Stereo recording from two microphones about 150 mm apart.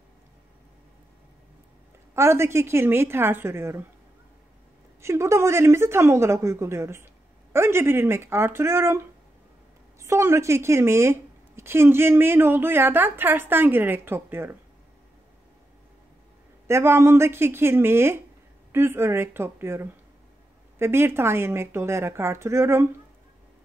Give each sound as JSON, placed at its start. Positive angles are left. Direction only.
{"t": 2.1, "sound": "a woman's voice", "side_deg": -20}
{"t": 5.0, "sound": "a woman's voice", "side_deg": -20}
{"t": 16.6, "sound": "a woman's voice", "side_deg": -15}